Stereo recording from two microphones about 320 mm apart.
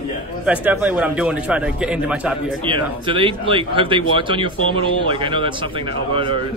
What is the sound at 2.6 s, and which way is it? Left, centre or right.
Speech, centre.